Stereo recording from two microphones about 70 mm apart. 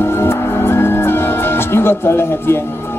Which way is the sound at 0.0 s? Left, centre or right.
Left.